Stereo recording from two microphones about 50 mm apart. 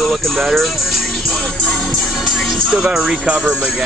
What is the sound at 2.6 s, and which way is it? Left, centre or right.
Speech, centre.